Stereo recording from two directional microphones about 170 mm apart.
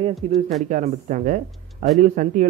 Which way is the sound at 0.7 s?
50° right (ahead or behind).